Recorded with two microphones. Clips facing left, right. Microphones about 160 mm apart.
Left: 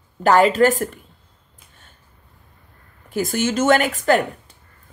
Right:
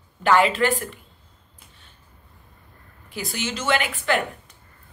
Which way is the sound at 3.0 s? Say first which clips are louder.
Left 9 dB; 45° left (ahead or behind).